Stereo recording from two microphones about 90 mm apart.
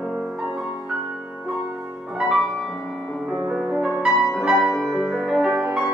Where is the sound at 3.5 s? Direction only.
10° right (ahead or behind).